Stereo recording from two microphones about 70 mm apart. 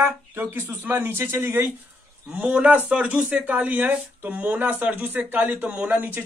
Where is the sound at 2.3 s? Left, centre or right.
Right.